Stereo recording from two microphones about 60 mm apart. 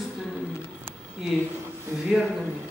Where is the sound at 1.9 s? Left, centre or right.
Centre.